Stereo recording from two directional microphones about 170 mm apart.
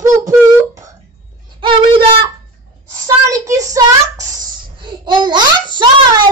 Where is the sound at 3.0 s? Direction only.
20° right (ahead or behind).